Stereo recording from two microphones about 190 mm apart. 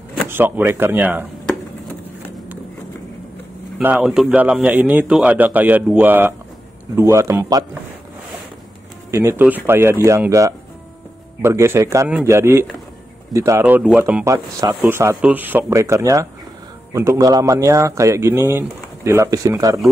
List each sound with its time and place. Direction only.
0.3 s speech: 10° right (ahead or behind)
3.7 s speech: 5° right (ahead or behind)
9.1 s speech: 15° right (ahead or behind)